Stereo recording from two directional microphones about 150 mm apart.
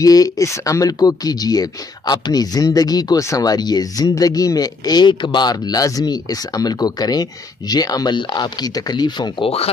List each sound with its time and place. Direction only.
0.0 s speech: 25° left (ahead or behind)